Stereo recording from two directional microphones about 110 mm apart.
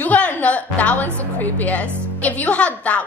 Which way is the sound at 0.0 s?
15° left (ahead or behind).